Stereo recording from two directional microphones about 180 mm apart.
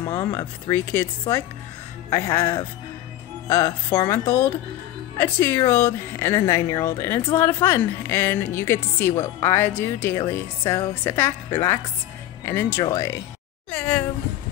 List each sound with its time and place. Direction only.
0.1 s a woman's voice: 15° left (ahead or behind)